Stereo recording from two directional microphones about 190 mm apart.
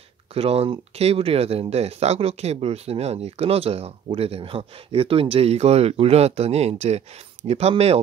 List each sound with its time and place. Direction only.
0.3 s speech: 30° right (ahead or behind)